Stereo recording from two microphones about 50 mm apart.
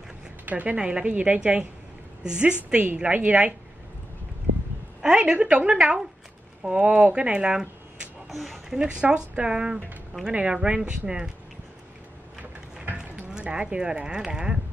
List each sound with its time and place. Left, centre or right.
0.5 s a woman's voice: right
0.7 s speech: centre
5.0 s a woman's voice: centre
8.3 s speech: centre
8.6 s speech: centre
12.9 s speech: centre